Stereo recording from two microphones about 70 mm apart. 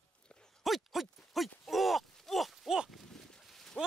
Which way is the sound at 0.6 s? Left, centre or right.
Centre.